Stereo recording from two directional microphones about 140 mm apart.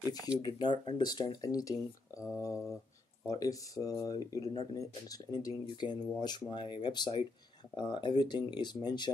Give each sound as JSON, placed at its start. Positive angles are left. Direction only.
{"t": 0.4, "sound": "speech", "side_deg": 30}